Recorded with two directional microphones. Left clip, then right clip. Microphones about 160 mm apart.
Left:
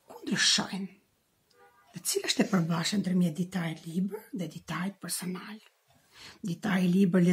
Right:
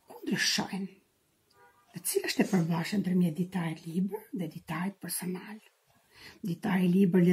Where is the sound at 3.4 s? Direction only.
45° left (ahead or behind).